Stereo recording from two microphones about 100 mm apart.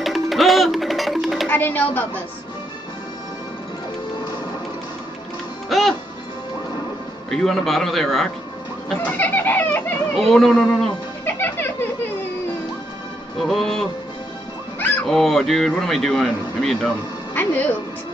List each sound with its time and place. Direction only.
0.0 s music: centre (ahead or behind)
1.5 s speech: 20° left (ahead or behind)
5.7 s speech: centre (ahead or behind)
7.2 s speech: 5° left (ahead or behind)
8.8 s chicken: 10° left (ahead or behind)
10.3 s speech: centre (ahead or behind)
11.2 s music: 20° left (ahead or behind)
13.4 s speech: 5° left (ahead or behind)
15.0 s speech: centre (ahead or behind)
17.3 s a sound: 20° left (ahead or behind)